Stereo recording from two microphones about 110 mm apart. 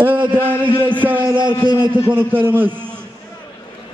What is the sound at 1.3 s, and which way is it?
Speech, 45° right (ahead or behind).